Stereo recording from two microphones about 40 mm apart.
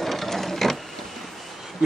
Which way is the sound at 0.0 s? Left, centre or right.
Centre.